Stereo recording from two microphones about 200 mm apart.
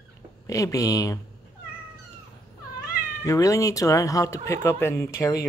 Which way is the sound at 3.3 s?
15° left (ahead or behind).